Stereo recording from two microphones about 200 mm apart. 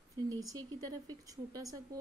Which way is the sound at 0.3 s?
15° right (ahead or behind).